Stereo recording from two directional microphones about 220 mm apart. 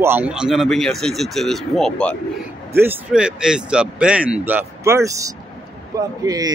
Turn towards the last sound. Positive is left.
turn(degrees=-15)  # may be behind; listen again after turning